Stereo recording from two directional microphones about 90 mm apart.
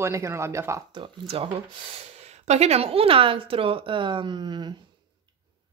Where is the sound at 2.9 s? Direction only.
90° right; by 4.7 s 55° right (ahead or behind).